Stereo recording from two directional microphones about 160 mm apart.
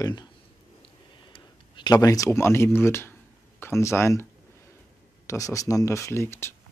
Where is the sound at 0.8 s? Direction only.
30° left (ahead or behind).